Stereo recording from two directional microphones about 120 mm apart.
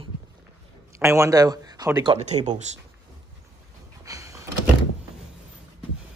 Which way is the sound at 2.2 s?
75° right (ahead or behind).